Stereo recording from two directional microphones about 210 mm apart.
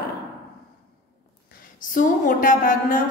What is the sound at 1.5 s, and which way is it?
A woman's voice, 40° left (ahead or behind).